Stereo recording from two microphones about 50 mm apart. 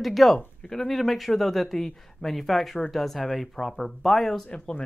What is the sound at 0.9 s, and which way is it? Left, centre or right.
Speech, centre.